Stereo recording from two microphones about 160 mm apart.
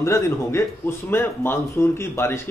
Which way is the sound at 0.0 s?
15° left (ahead or behind).